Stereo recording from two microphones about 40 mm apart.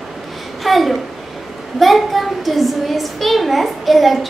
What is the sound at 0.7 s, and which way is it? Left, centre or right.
A child's voice, centre.